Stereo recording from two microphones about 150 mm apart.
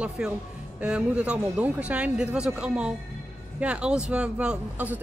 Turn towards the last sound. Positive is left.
turn(degrees=-10)  # may be behind; listen again after turning